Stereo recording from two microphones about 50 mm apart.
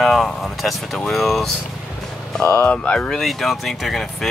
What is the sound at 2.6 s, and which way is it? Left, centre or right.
Speech, left.